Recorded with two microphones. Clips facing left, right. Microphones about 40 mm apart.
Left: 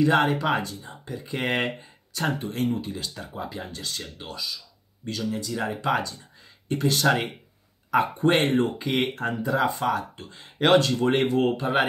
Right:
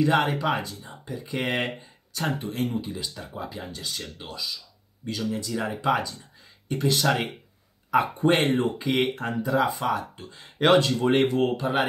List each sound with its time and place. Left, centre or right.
0.0 s speech: centre